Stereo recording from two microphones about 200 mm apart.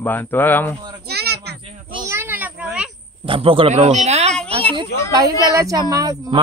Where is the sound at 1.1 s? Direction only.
55° right (ahead or behind).